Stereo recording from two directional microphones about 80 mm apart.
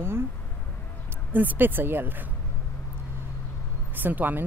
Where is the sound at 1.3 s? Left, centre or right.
Right.